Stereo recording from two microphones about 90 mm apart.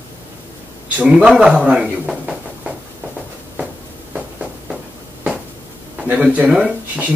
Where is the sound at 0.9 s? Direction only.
10° right (ahead or behind).